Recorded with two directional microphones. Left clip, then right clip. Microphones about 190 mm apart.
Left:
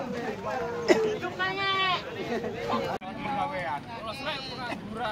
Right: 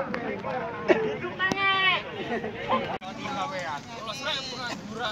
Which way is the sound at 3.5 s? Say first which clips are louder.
Even; 15° right (ahead or behind).